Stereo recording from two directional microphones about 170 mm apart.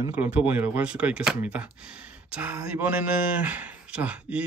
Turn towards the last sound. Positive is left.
turn(degrees=-10)  # may be behind; listen again after turning